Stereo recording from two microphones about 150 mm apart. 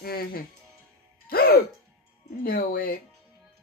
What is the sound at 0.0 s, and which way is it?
Speech, 90° left.